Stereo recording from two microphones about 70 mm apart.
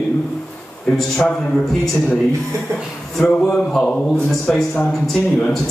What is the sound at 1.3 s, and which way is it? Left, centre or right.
Speech, centre.